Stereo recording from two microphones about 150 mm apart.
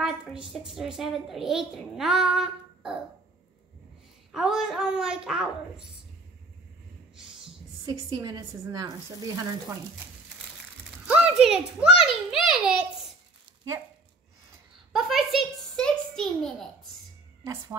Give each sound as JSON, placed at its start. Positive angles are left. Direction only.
{"t": 0.0, "sound": "a woman's voice", "side_deg": -5}
{"t": 4.3, "sound": "a child's voice", "side_deg": -5}
{"t": 7.8, "sound": "speech", "side_deg": -25}
{"t": 11.1, "sound": "a child's voice", "side_deg": -5}
{"t": 14.9, "sound": "a sound", "side_deg": 0}